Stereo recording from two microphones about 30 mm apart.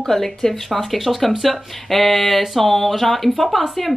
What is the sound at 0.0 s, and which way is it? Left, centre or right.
Speech, centre.